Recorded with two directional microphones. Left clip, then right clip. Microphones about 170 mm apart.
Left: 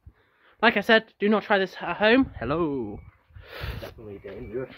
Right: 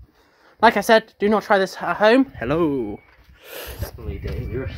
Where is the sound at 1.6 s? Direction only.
25° left (ahead or behind).